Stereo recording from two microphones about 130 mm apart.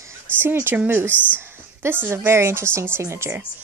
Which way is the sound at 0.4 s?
15° right (ahead or behind).